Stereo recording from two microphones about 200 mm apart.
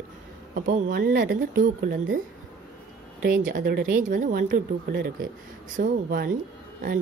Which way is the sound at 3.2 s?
45° right (ahead or behind).